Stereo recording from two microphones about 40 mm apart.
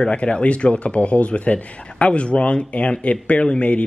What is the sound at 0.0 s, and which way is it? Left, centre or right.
Speech, left.